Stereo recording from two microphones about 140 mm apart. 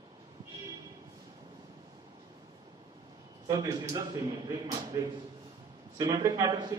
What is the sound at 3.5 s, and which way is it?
A man's voice, 25° right (ahead or behind).